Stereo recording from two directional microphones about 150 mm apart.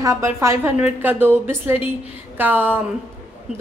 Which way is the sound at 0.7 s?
10° right (ahead or behind).